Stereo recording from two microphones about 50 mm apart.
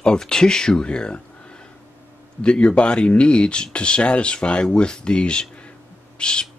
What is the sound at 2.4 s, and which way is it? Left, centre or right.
Speech, centre.